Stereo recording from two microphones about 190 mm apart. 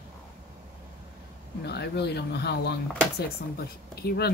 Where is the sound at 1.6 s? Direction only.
60° left (ahead or behind).